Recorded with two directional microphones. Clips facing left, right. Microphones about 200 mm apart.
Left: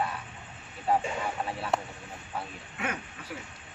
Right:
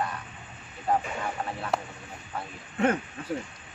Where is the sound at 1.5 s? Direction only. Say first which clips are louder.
Even; 5° left (ahead or behind).